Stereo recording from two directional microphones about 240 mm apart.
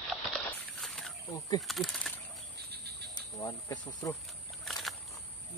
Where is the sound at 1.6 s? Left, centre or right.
Centre.